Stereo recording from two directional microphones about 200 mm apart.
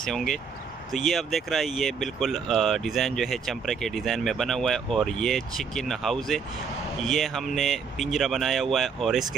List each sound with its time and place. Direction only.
0.0 s speech: centre (ahead or behind)